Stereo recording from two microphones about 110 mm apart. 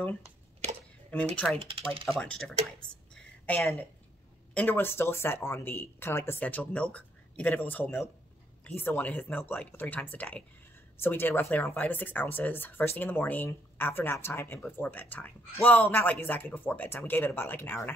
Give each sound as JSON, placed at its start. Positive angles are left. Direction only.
{"t": 1.3, "sound": "speech", "side_deg": 10}
{"t": 1.6, "sound": "speech", "side_deg": -60}
{"t": 2.0, "sound": "speech", "side_deg": 10}
{"t": 3.2, "sound": "a sound", "side_deg": 15}
{"t": 4.6, "sound": "speech", "side_deg": 20}